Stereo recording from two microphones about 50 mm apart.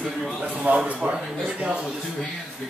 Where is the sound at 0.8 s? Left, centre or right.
Centre.